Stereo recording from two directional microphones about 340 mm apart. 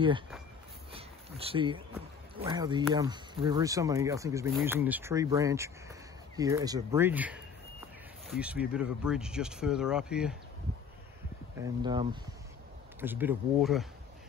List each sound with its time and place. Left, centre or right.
0.9 s a sound: centre
2.3 s speech: centre
11.6 s speech: centre